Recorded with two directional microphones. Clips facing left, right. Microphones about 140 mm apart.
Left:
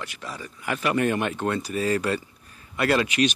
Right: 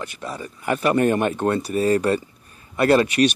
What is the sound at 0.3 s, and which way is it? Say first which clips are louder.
Speech: right 6 dB; 35° right (ahead or behind).